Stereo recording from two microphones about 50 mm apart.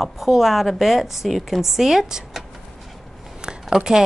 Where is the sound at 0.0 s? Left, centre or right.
Centre.